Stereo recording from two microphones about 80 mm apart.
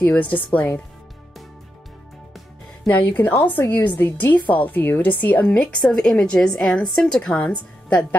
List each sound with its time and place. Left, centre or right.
0.0 s a woman's voice: centre
2.9 s a woman's voice: left